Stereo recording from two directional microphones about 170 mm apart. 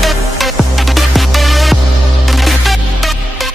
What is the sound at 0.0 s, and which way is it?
Music, centre (ahead or behind).